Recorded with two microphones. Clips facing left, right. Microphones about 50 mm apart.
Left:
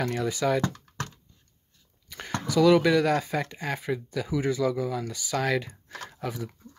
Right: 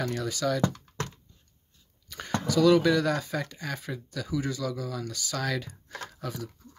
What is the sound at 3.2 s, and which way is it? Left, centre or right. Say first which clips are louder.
Speech: left 3 dB; centre.